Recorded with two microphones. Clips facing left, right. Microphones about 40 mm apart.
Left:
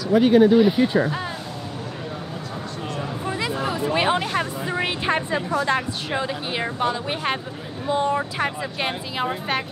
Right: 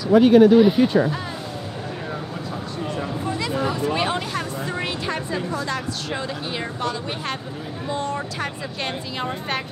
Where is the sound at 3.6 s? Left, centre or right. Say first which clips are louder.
Left 3 dB; centre.